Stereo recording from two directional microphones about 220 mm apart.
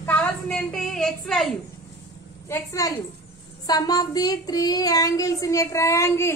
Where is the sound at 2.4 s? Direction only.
15° left (ahead or behind).